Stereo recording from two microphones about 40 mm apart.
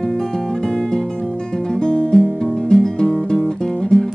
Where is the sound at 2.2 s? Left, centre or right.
Centre.